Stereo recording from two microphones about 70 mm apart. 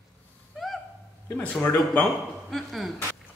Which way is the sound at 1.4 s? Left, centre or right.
Left.